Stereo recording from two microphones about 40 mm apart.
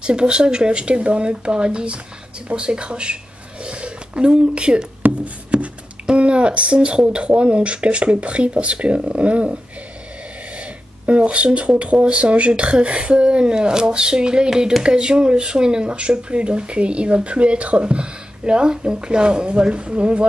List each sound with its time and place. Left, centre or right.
0.0 s speech: right
5.2 s music: right
6.0 s speech: right
10.6 s a sound: right
11.8 s speech: right